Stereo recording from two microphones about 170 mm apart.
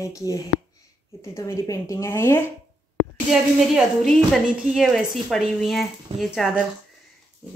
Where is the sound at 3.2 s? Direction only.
Centre (ahead or behind).